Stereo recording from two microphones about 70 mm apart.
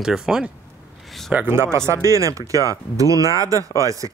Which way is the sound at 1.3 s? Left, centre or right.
Right.